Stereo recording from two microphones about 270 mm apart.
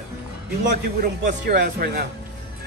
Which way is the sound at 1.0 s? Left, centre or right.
Right.